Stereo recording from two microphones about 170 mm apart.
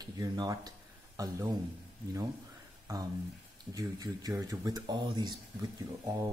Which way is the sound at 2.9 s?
15° right (ahead or behind).